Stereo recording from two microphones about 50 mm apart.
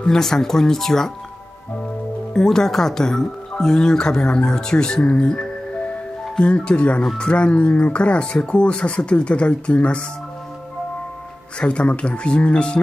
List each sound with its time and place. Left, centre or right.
0.0 s speech: centre
2.3 s speech: centre
11.6 s speech: left